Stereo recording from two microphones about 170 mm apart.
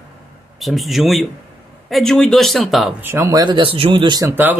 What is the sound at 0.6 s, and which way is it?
Speech, centre (ahead or behind).